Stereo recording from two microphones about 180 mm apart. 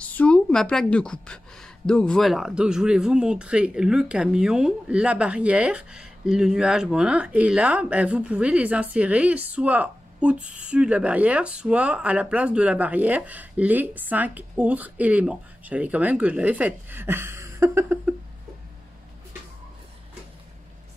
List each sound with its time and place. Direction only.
0.0 s a woman's voice: 10° left (ahead or behind); by 18.1 s 15° right (ahead or behind)